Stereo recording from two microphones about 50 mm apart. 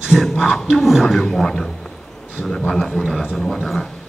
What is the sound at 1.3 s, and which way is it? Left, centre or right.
Speech, centre.